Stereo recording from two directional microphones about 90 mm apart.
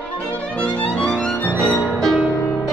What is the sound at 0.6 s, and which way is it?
Music, 10° left (ahead or behind).